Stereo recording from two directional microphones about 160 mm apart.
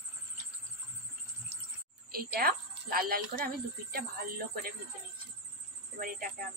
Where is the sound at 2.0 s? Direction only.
70° right (ahead or behind).